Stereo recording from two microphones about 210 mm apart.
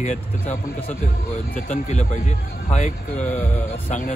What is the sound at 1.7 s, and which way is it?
A man's voice, 35° left (ahead or behind).